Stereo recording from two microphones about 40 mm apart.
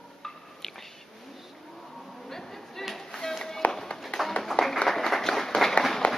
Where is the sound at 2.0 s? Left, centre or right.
Centre.